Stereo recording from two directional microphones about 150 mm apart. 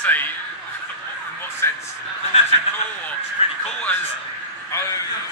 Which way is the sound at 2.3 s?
40° left (ahead or behind).